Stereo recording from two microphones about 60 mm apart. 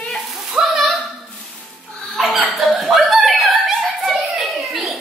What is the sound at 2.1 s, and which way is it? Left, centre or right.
Chuckle, centre.